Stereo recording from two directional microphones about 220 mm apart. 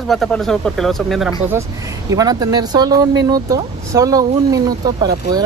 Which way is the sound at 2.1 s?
15° right (ahead or behind).